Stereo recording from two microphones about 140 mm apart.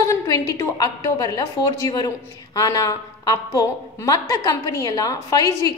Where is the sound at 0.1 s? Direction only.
20° left (ahead or behind).